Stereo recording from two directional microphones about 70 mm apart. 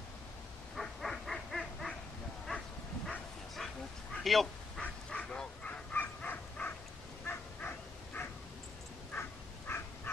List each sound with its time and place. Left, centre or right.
0.7 s dog: centre
3.5 s dog: centre
4.8 s bow-wow: centre
7.2 s dog: left